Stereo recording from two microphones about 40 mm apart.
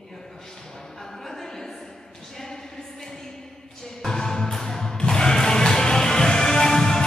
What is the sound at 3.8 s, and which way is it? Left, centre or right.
Music, centre.